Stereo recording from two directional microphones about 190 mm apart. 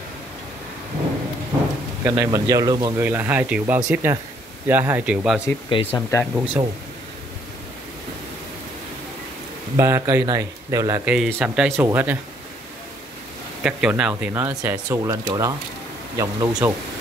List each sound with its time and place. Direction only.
2.0 s speech: 15° right (ahead or behind)
5.7 s speech: 25° left (ahead or behind)
6.3 s speech: 10° right (ahead or behind)
9.8 s speech: 15° right (ahead or behind)
11.3 s speech: 5° right (ahead or behind)
13.6 s speech: 5° right (ahead or behind)
14.3 s speech: 15° right (ahead or behind)